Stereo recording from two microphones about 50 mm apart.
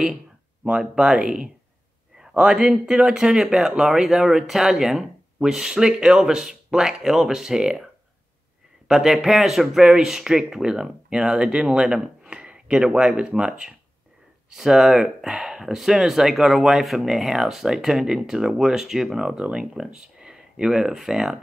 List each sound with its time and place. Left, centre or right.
0.7 s speech: centre
8.8 s speech: centre
14.5 s speech: centre